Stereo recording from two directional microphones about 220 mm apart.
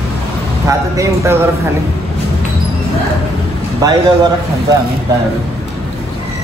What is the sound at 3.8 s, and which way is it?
Speech, 15° right (ahead or behind).